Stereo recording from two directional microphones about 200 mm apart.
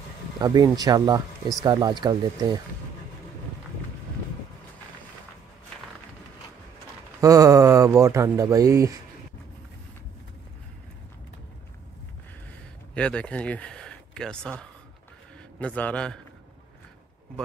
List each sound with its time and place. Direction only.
0.4 s speech: 20° right (ahead or behind)
7.2 s speech: 15° right (ahead or behind)
12.9 s a man's voice: 5° left (ahead or behind)